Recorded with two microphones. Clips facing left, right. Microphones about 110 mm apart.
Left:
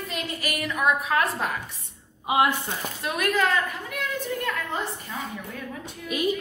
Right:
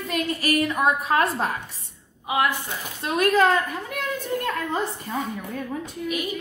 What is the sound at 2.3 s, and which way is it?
Speech, 25° left (ahead or behind).